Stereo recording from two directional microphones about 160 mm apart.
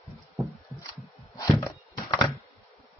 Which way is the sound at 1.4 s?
20° left (ahead or behind).